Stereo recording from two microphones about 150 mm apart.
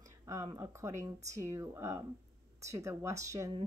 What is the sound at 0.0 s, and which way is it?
Speech, 20° right (ahead or behind).